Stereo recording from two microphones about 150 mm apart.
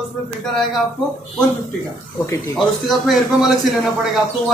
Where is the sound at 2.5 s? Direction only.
Centre (ahead or behind).